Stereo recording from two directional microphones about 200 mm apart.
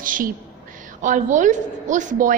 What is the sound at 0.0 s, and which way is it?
A woman's voice, 45° right (ahead or behind).